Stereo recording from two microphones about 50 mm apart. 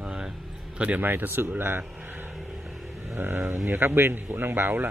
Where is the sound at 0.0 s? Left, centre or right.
Right.